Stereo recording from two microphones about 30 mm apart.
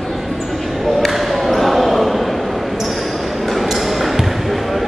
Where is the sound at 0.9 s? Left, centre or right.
Centre.